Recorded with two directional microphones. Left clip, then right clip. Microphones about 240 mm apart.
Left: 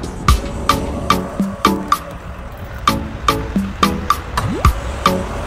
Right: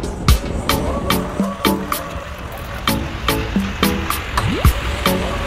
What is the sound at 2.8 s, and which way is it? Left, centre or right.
Music, centre.